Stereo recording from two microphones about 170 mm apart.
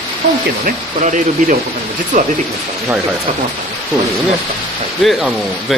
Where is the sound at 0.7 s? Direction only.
50° right (ahead or behind).